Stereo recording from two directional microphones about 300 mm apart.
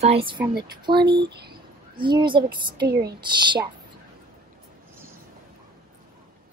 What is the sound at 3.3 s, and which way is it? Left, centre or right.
Speech, centre.